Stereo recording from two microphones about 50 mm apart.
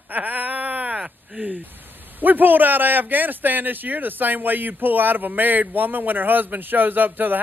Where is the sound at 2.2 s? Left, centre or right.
Right.